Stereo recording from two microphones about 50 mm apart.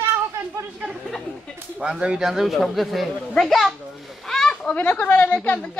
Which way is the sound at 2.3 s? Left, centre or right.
Centre.